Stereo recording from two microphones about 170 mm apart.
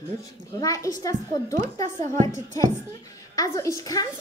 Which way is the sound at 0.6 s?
20° left (ahead or behind).